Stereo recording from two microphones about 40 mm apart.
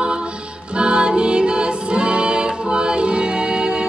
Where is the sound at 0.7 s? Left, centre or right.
Right.